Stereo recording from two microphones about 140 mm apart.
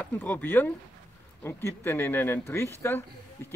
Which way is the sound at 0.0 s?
15° left (ahead or behind).